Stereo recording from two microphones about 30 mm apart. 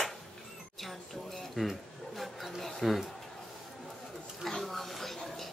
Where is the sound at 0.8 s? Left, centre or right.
Centre.